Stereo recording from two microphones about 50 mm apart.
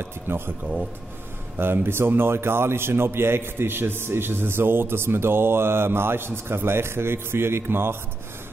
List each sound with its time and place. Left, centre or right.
0.0 s a man's voice: right
1.6 s a man's voice: right